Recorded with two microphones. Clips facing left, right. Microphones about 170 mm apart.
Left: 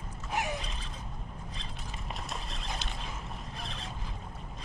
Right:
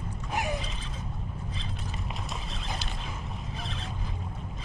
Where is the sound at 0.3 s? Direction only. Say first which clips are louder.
Right 2 dB; 10° right (ahead or behind).